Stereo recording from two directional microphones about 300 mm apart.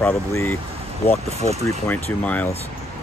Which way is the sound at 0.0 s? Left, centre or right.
Centre.